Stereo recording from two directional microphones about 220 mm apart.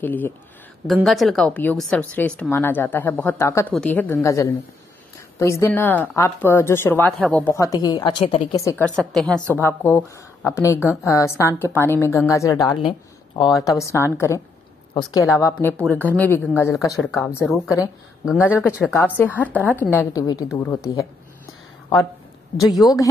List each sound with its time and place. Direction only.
0.0 s a woman's voice: 10° left (ahead or behind); by 8.6 s 25° left (ahead or behind)
8.6 s a woman's voice: 5° left (ahead or behind)
15.8 s speech: 10° right (ahead or behind)
16.1 s a woman's voice: 10° left (ahead or behind)
18.2 s a woman's voice: 5° right (ahead or behind); by 20.8 s 15° left (ahead or behind)
22.8 s speech: 20° left (ahead or behind)